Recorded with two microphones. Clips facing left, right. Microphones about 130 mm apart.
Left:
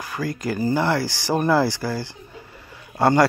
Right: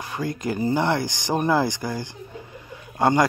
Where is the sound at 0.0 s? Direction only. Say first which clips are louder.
Left 1 dB; 25° right (ahead or behind).